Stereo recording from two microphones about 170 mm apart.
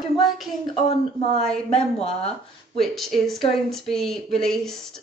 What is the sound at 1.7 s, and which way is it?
Speech, 35° left (ahead or behind).